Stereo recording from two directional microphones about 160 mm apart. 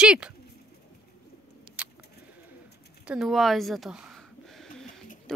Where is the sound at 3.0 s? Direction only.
5° right (ahead or behind).